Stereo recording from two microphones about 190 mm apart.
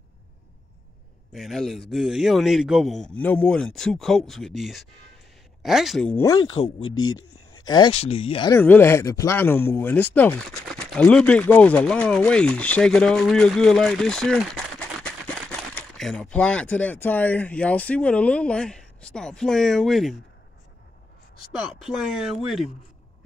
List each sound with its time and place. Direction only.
1.3 s speech: centre (ahead or behind)
6.1 s speech: 15° left (ahead or behind)
6.8 s speech: 90° left
7.6 s speech: 20° left (ahead or behind)
8.5 s speech: 10° left (ahead or behind)
21.5 s speech: centre (ahead or behind)